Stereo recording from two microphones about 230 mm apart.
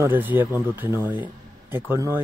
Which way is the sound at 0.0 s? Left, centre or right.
Centre.